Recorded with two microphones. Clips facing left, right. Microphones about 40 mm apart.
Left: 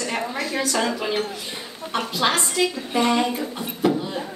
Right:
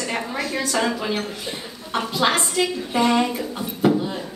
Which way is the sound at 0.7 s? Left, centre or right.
Centre.